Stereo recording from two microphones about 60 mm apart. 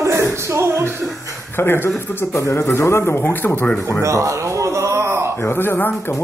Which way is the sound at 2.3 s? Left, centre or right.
Left.